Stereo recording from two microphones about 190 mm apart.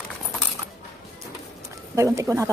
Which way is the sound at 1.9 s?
15° right (ahead or behind).